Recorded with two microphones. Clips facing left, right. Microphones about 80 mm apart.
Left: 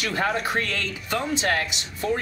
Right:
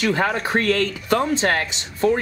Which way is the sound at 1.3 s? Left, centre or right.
Right.